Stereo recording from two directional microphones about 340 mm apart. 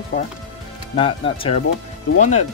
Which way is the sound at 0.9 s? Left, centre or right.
Centre.